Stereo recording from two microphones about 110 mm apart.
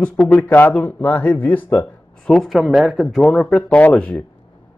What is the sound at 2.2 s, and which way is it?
Speech, 5° left (ahead or behind).